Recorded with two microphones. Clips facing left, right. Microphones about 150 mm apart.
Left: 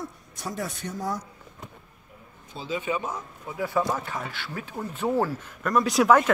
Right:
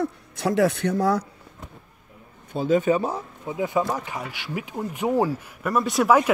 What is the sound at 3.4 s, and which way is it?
Speech, 20° right (ahead or behind).